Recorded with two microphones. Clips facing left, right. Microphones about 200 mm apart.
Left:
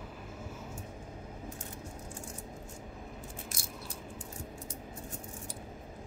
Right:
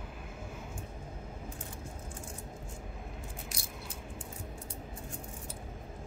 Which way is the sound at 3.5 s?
45° left (ahead or behind).